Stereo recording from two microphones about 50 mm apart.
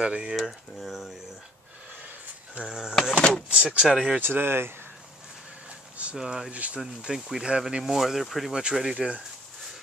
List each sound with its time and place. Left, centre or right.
0.0 s speech: centre
0.4 s speech: centre
2.6 s speech: centre
3.2 s speech: left
3.4 s speech: centre
3.8 s speech: centre
4.2 s speech: right
6.1 s speech: centre
6.5 s speech: right
7.1 s speech: centre
7.8 s speech: centre
8.5 s speech: centre